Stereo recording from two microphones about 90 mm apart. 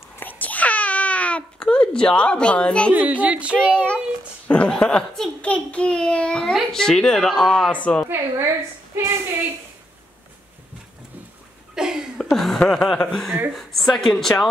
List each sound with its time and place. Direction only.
0.2 s babbling: 20° left (ahead or behind)
2.9 s a woman's voice: 15° right (ahead or behind)
3.7 s a child's voice: 10° left (ahead or behind)
8.9 s a woman's voice: 25° right (ahead or behind)
11.7 s a sound: 5° right (ahead or behind)
12.2 s a sound: 5° left (ahead or behind)
12.5 s a child's voice: 5° left (ahead or behind)